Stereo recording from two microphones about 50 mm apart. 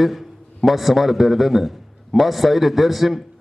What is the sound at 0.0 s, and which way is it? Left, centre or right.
A man's voice, centre.